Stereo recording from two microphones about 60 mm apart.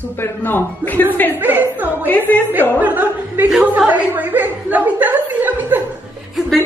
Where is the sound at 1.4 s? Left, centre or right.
Right.